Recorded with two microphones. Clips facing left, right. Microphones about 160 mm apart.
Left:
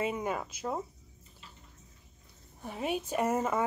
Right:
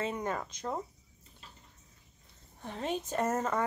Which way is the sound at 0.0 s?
10° left (ahead or behind).